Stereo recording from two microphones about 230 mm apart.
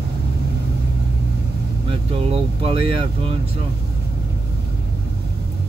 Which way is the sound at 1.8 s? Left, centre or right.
Right.